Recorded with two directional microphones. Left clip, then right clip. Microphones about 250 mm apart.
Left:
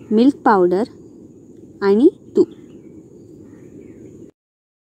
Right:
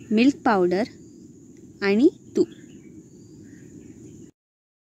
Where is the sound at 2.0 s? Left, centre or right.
Centre.